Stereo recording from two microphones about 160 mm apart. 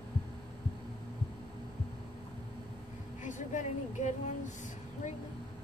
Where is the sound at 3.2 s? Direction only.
50° left (ahead or behind).